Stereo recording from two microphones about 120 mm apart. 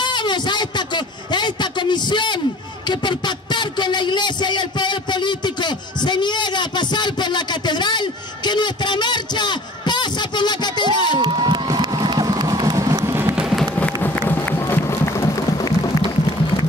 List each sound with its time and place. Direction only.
0.0 s a sound: 40° left (ahead or behind)
11.1 s crowd: 40° right (ahead or behind); by 13.4 s 20° right (ahead or behind)
13.4 s music: 5° right (ahead or behind)
14.0 s music: 15° left (ahead or behind); by 16.0 s 30° left (ahead or behind)